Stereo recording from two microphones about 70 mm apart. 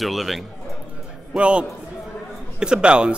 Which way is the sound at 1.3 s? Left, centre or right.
Centre.